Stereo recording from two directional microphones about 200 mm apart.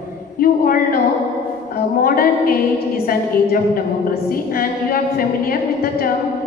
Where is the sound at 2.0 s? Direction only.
45° left (ahead or behind).